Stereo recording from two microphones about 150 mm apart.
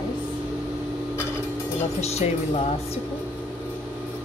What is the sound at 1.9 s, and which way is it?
Speech, 45° left (ahead or behind).